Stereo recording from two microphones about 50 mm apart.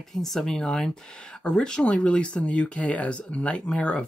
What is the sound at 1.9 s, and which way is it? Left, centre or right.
Speech, left.